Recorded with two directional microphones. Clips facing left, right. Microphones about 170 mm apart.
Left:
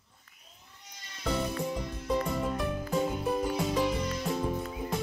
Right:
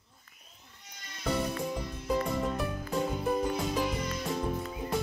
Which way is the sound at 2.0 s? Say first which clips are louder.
Even; centre (ahead or behind).